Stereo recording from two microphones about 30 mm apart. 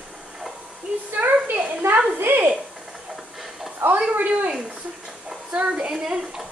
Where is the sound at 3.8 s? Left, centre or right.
Right.